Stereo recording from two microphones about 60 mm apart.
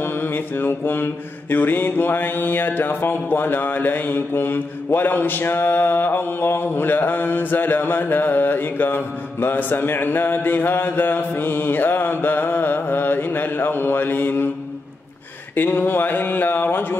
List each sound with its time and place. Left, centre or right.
0.0 s mantra: left
15.5 s mantra: left